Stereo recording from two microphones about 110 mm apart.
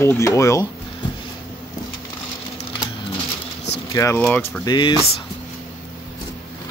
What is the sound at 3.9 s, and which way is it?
Speech, 25° left (ahead or behind).